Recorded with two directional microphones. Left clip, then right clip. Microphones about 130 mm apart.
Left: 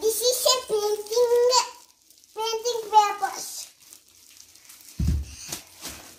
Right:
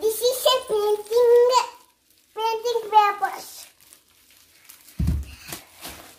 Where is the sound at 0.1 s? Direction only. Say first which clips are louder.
Right 2 dB; centre (ahead or behind).